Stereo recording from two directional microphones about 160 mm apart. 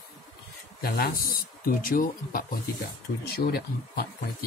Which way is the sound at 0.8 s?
70° left (ahead or behind).